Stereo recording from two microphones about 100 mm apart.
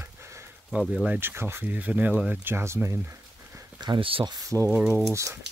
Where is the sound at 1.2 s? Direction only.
25° right (ahead or behind).